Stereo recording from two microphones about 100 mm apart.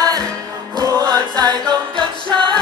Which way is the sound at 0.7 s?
40° right (ahead or behind).